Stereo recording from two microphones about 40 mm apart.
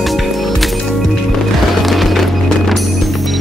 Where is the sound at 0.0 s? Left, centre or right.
Centre.